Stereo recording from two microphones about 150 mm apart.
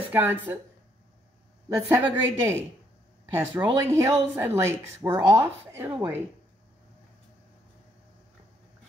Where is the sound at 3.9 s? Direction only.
20° right (ahead or behind).